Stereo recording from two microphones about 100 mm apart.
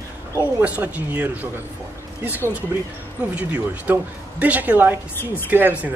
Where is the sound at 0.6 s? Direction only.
15° right (ahead or behind).